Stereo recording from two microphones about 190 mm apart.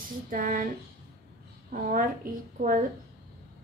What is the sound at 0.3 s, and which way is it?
Speech, 45° right (ahead or behind).